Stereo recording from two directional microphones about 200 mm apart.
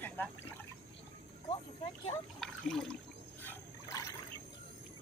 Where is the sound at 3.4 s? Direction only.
15° left (ahead or behind).